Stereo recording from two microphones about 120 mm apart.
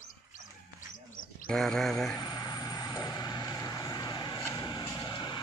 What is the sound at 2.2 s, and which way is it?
Vehicle, 35° left (ahead or behind).